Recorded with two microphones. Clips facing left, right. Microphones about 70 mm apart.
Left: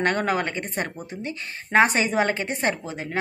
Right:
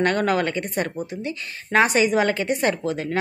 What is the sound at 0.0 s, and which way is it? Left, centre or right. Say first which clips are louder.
A woman's voice: right 3 dB; left.